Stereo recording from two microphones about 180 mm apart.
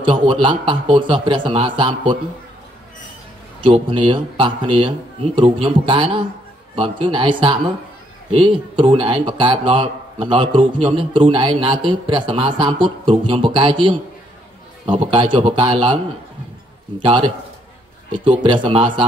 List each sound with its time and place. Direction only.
0.0 s a man's voice: 30° right (ahead or behind)
3.6 s a man's voice: 30° right (ahead or behind)
17.0 s a man's voice: 30° right (ahead or behind)
18.4 s a man's voice: 30° right (ahead or behind)